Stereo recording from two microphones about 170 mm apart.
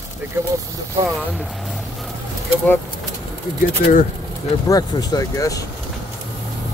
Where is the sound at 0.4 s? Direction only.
15° right (ahead or behind).